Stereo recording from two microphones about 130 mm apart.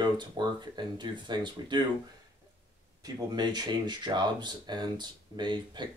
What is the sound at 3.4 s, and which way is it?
Speech, 35° right (ahead or behind).